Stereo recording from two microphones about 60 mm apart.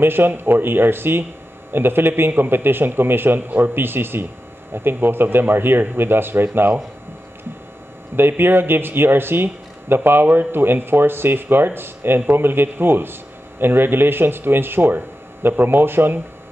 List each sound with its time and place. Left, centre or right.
0.0 s a man's voice: right
8.2 s a man's voice: right